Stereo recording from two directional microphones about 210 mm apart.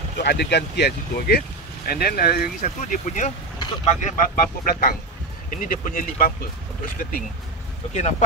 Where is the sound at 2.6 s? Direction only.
35° left (ahead or behind).